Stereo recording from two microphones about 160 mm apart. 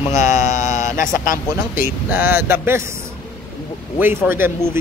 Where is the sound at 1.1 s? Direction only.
60° left (ahead or behind).